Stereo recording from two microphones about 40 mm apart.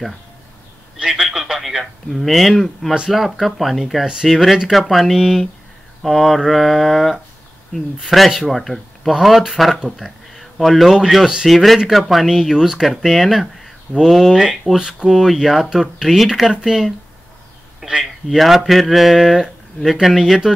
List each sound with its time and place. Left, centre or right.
1.3 s speech: centre
4.0 s speech: centre
4.3 s speech: centre
12.9 s speech: centre
18.0 s speech: centre